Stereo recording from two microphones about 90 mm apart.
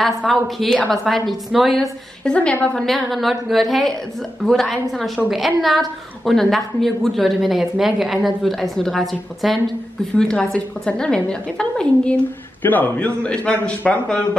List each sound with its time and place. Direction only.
0.3 s a woman's voice: 5° left (ahead or behind)
2.3 s a woman's voice: 15° left (ahead or behind)
2.8 s a woman's voice: centre (ahead or behind)